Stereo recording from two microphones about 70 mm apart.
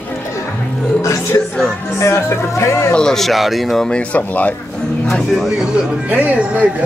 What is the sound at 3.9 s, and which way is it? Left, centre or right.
Speech, left.